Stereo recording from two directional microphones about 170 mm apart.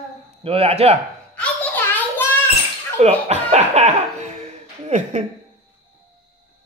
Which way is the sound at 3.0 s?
40° right (ahead or behind).